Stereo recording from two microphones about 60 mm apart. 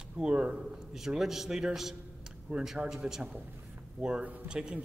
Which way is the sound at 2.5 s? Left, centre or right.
Right.